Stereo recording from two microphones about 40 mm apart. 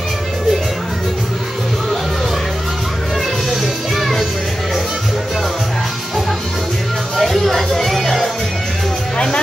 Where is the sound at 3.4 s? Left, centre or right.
Centre.